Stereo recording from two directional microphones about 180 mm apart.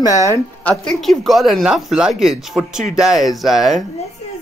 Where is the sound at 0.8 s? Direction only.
Centre (ahead or behind).